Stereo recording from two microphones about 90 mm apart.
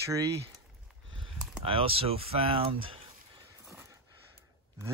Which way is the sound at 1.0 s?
80° right.